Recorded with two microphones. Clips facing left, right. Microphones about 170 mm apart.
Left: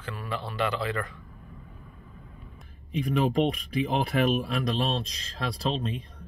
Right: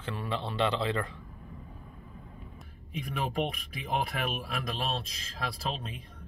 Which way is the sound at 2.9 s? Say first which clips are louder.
Left 9 dB; centre (ahead or behind).